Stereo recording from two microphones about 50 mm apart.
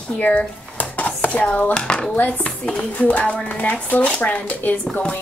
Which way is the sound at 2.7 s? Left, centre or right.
Left.